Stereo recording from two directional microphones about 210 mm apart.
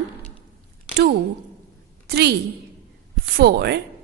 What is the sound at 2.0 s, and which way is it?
Speech, 50° right (ahead or behind).